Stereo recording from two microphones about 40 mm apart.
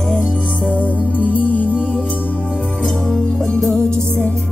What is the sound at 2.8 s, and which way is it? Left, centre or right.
Music, centre.